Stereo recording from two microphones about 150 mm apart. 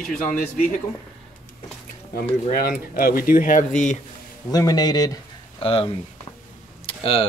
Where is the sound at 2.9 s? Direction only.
80° left; by 4.0 s 55° left (ahead or behind).